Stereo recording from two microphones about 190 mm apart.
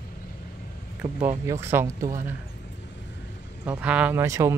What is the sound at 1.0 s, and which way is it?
Speech, 35° right (ahead or behind).